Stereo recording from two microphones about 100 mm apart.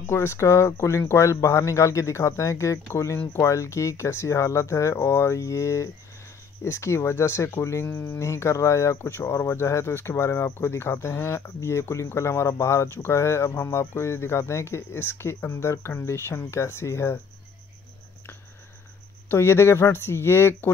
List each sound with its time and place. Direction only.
0.1 s speech: 25° left (ahead or behind)
19.2 s speech: 25° left (ahead or behind)